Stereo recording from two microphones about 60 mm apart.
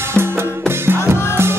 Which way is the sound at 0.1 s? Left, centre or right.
Right.